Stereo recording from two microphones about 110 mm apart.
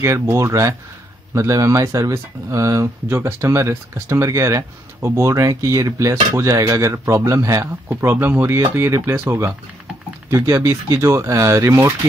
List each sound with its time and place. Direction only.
0.0 s speech: 25° right (ahead or behind)